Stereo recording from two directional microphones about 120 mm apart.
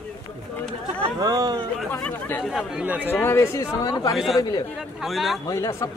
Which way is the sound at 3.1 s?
20° left (ahead or behind).